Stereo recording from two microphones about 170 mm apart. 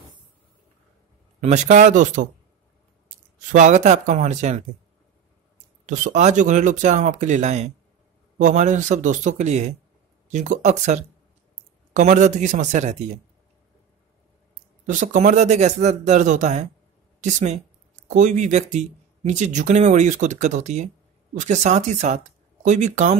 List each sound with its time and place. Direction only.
1.4 s speech: 45° right (ahead or behind)
3.5 s speech: 45° right (ahead or behind)
5.9 s speech: 45° right (ahead or behind)
14.9 s speech: 45° right (ahead or behind)